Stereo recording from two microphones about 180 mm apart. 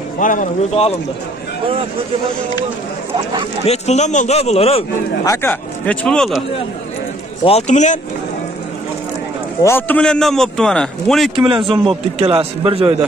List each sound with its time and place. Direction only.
0.2 s speech: 45° left (ahead or behind)
3.6 s a man's voice: 35° left (ahead or behind)
5.2 s speech: 15° left (ahead or behind)
7.4 s a man's voice: 40° left (ahead or behind)
9.6 s a man's voice: 10° left (ahead or behind)
11.3 s a man's voice: 30° right (ahead or behind)